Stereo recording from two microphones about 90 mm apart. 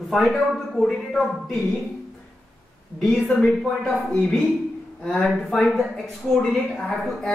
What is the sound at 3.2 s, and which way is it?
Speech, 15° left (ahead or behind).